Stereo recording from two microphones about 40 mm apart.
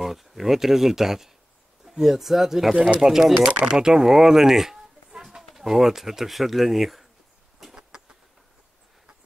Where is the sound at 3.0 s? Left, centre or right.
Centre.